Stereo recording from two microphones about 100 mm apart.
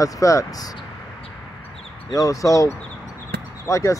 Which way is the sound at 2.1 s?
35° left (ahead or behind).